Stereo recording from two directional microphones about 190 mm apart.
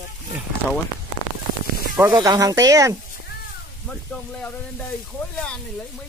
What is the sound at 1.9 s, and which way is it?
Speech, 15° right (ahead or behind).